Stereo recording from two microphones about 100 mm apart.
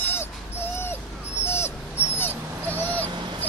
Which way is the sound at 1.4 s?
25° left (ahead or behind).